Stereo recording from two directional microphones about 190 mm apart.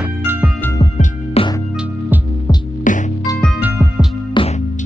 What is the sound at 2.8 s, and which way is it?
Music, 40° left (ahead or behind).